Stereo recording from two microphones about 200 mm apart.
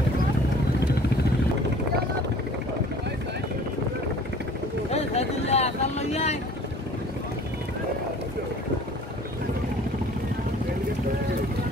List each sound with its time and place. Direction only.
4.9 s vehicle: 30° left (ahead or behind)